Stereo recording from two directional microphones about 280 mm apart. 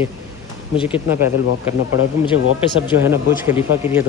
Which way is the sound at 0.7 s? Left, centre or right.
Centre.